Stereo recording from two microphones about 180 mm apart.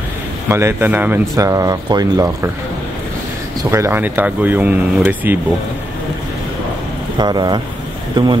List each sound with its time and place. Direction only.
0.5 s speech: 15° right (ahead or behind)
3.7 s speech: 15° right (ahead or behind)
7.2 s speech: 25° right (ahead or behind)